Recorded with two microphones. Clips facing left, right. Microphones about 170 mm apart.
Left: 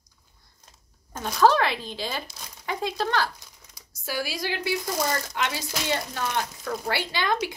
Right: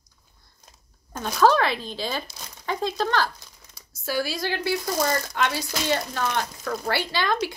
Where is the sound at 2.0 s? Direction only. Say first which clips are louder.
Right 2 dB; 15° left (ahead or behind).